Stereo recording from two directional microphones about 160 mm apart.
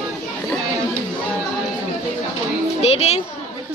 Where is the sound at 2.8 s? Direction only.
40° left (ahead or behind).